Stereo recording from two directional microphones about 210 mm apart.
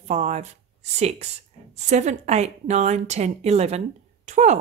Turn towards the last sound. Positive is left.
turn(degrees=-35)  # may be behind; listen again after turning